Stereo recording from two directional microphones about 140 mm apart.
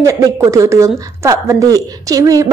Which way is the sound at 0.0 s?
20° right (ahead or behind).